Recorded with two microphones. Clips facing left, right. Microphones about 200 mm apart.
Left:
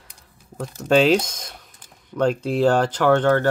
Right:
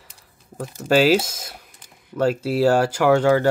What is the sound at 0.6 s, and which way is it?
Speech, 5° right (ahead or behind).